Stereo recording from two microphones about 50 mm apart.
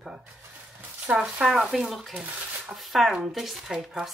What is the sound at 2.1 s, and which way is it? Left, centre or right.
Speech, right.